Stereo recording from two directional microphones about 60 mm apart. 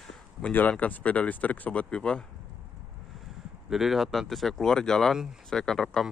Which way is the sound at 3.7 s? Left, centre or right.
Centre.